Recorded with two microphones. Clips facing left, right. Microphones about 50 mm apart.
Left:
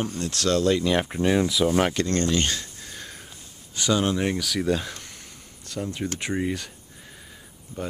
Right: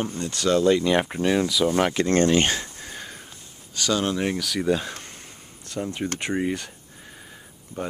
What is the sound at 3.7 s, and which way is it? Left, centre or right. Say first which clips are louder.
Speech: left 1 dB; centre.